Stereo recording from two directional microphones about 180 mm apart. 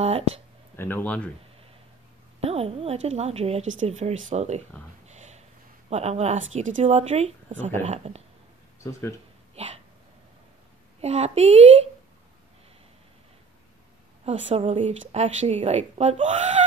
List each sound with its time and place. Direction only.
0.7 s speech: 10° left (ahead or behind)
2.4 s a woman's voice: 35° right (ahead or behind)
5.0 s a sound: 40° right (ahead or behind)
5.9 s a woman's voice: 35° right (ahead or behind)
9.6 s a woman's voice: 35° right (ahead or behind)
11.0 s a woman's voice: 35° right (ahead or behind)
14.2 s a woman's voice: 35° right (ahead or behind)